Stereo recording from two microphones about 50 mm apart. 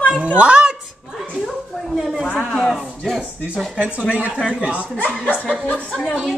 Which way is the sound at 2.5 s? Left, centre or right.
Centre.